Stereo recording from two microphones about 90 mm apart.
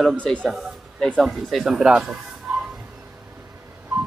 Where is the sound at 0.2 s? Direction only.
10° left (ahead or behind); by 2.1 s 10° right (ahead or behind).